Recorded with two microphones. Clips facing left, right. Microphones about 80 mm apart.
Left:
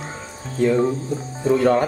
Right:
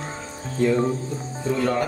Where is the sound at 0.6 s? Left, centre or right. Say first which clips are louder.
Left 3 dB; centre.